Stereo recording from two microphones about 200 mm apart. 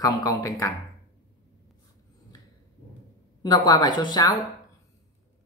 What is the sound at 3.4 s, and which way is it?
Speech, 20° left (ahead or behind).